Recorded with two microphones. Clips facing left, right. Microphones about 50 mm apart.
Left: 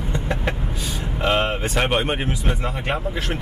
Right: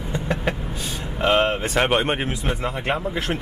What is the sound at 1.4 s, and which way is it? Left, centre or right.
Speech, centre.